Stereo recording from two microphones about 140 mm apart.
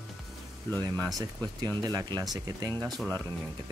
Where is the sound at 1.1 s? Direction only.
25° right (ahead or behind).